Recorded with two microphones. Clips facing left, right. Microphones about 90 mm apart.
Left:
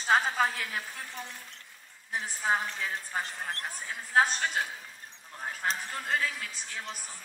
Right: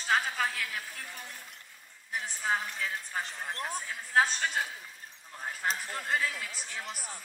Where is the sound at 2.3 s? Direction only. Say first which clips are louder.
Left 3 dB; 25° left (ahead or behind).